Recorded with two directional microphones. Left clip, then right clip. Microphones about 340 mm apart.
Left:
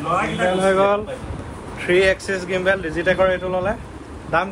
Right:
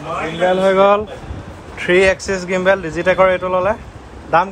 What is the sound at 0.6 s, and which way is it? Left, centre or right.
Speech, right.